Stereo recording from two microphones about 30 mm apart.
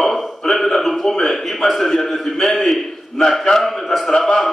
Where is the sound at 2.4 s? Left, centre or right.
Centre.